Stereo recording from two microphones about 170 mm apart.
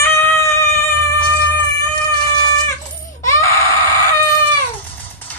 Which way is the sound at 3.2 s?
20° left (ahead or behind).